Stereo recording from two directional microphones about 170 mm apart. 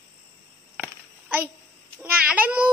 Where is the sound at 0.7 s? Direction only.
10° right (ahead or behind).